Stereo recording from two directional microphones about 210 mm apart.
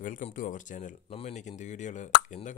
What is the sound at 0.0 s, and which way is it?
Speech, 40° left (ahead or behind).